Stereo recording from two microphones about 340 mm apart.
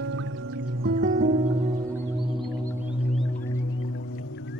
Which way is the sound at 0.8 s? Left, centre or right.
Right.